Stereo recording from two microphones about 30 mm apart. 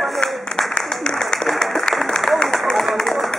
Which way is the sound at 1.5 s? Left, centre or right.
Centre.